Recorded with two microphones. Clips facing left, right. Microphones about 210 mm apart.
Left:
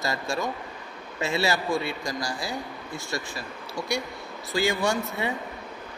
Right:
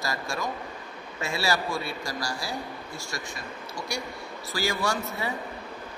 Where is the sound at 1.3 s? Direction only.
20° left (ahead or behind).